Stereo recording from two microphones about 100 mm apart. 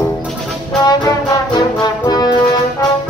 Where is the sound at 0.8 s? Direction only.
40° left (ahead or behind).